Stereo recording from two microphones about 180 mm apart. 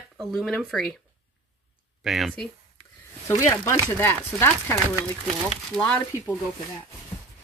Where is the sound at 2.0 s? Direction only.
Centre (ahead or behind).